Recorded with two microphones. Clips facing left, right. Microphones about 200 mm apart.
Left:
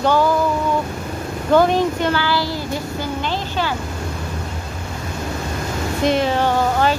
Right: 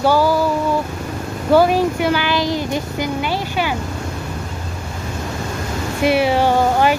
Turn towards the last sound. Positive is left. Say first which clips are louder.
# right 2 dB
turn(degrees=-10)  # may be behind; listen again after turning